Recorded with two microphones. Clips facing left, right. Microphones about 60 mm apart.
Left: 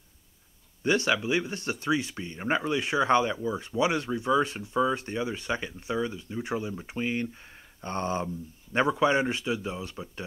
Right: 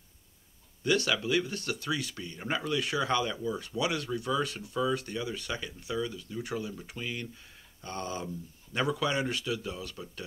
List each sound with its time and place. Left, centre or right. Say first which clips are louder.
0.8 s speech: left 3 dB; left